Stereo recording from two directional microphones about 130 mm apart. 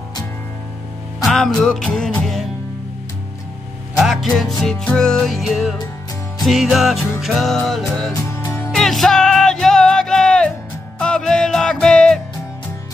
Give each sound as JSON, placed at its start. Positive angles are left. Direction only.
{"t": 1.2, "sound": "music", "side_deg": 5}
{"t": 3.9, "sound": "music", "side_deg": 0}
{"t": 8.1, "sound": "music", "side_deg": 20}
{"t": 8.7, "sound": "music", "side_deg": 0}